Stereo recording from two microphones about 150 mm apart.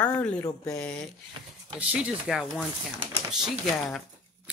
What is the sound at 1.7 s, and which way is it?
Speech, 5° right (ahead or behind).